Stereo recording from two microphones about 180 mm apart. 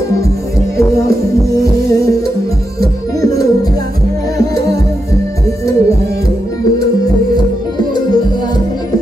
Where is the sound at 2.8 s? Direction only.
20° left (ahead or behind).